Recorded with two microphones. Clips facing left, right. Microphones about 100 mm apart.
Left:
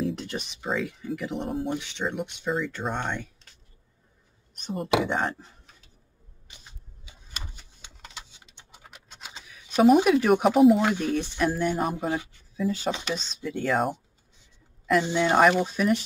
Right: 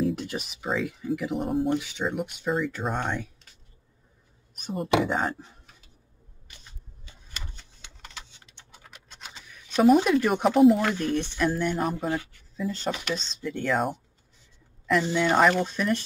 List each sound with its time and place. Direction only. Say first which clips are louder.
0.0 s speech: right 2 dB; 5° right (ahead or behind)
4.6 s speech: right 1 dB; 5° right (ahead or behind)
7.1 s a sound: left 1 dB; 10° left (ahead or behind)
10.8 s speech: left 1 dB; 15° left (ahead or behind)
11.1 s speech: even; 5° left (ahead or behind)
15.0 s speech: left 1 dB; 20° left (ahead or behind)
15.4 s speech: left 2 dB; 5° left (ahead or behind)